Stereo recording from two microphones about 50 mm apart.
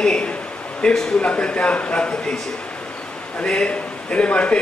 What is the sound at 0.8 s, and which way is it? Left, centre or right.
A man's voice, centre.